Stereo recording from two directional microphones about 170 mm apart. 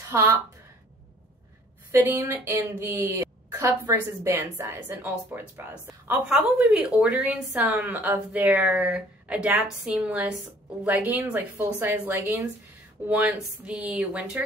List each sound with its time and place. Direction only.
0.1 s a woman's voice: 15° right (ahead or behind)
1.9 s a woman's voice: 15° right (ahead or behind)